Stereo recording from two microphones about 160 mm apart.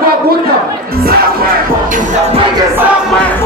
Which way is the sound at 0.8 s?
70° right (ahead or behind).